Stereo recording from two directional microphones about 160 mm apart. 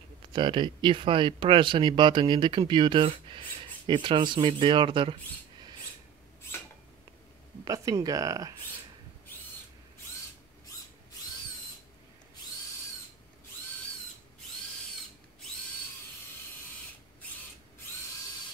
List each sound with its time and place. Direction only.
0.3 s speech: 30° right (ahead or behind)
7.6 s speech: 25° right (ahead or behind)